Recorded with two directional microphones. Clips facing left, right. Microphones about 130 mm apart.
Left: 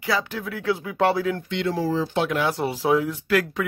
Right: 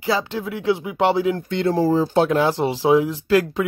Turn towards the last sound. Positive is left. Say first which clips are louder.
# right 4 dB
turn(degrees=-25)  # may be behind; listen again after turning